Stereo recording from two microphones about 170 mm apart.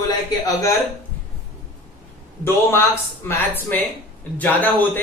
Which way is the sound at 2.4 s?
15° left (ahead or behind).